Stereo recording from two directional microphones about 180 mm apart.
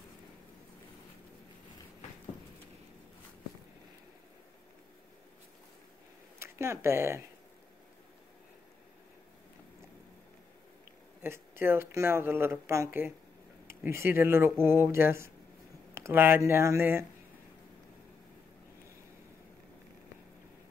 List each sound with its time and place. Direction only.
6.4 s speech: 15° right (ahead or behind)
11.2 s speech: 15° right (ahead or behind)